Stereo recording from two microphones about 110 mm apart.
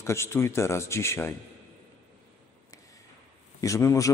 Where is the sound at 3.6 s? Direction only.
30° left (ahead or behind).